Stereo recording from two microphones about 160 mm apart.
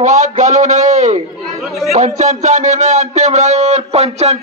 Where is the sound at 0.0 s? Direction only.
50° right (ahead or behind).